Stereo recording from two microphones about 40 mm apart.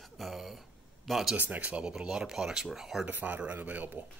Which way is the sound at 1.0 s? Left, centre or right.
Centre.